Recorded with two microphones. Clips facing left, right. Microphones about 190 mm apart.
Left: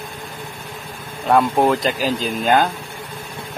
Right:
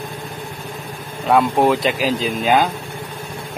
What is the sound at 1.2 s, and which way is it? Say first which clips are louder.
Speech: right 1 dB; centre (ahead or behind).